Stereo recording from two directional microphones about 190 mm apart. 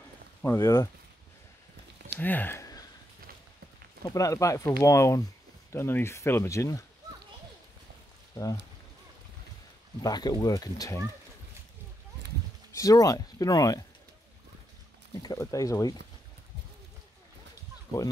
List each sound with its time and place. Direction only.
0.4 s speech: 15° left (ahead or behind)
2.1 s speech: 10° left (ahead or behind)
4.0 s speech: 15° left (ahead or behind)
10.0 s speech: 20° left (ahead or behind)
12.7 s speech: 20° left (ahead or behind)
15.2 s speech: 20° left (ahead or behind)